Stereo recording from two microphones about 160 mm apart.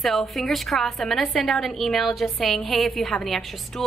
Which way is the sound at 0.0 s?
Centre (ahead or behind).